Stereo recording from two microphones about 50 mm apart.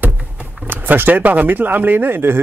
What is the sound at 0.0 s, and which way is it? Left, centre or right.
Power windows, right.